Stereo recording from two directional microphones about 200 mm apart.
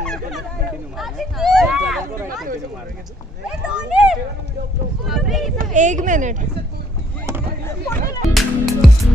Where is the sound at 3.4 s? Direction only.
5° right (ahead or behind).